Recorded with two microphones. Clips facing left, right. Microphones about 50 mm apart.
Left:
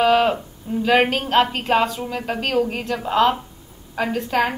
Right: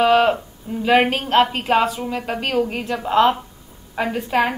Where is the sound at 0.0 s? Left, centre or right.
Centre.